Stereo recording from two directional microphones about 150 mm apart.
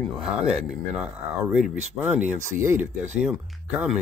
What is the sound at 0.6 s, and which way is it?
Speech, 5° right (ahead or behind).